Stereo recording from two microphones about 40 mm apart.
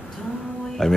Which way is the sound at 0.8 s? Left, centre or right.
Centre.